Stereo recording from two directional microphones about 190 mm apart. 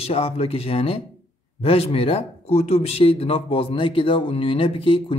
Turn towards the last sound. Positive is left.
turn(degrees=30)  # may be behind; listen again after turning